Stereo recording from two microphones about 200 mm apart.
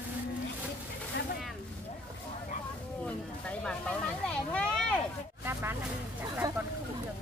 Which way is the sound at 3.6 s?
5° left (ahead or behind).